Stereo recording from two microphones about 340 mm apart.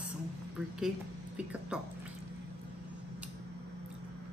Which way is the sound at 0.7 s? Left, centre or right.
Centre.